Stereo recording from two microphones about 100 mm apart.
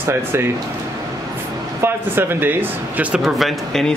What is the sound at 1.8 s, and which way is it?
Speech, 20° right (ahead or behind).